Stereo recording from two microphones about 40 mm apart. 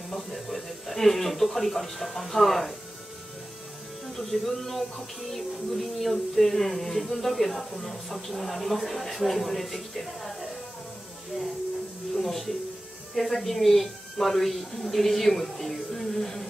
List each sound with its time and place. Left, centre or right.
0.1 s speech: centre
4.2 s speech: centre
12.2 s speech: centre